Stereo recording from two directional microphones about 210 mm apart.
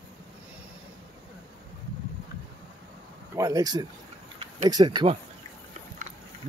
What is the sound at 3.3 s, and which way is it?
Speech, 15° right (ahead or behind).